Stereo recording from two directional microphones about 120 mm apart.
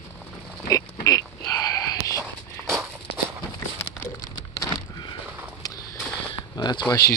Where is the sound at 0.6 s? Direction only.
30° left (ahead or behind).